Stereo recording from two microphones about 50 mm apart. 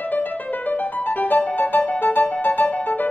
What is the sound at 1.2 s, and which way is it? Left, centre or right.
Music, left.